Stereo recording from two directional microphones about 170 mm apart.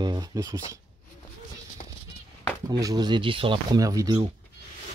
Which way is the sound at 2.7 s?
20° right (ahead or behind).